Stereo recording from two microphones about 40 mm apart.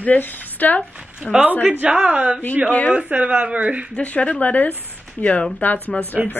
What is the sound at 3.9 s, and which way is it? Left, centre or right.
A woman's voice, left.